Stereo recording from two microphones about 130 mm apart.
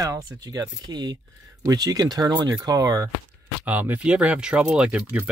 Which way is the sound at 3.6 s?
15° right (ahead or behind).